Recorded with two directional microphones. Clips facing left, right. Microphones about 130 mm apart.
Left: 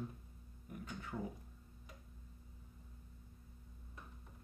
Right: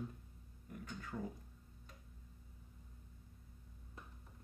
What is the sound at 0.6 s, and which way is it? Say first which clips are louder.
Speech: left 1 dB; 20° left (ahead or behind).